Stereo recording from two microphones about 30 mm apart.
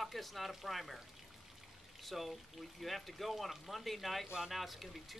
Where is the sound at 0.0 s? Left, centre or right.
Centre.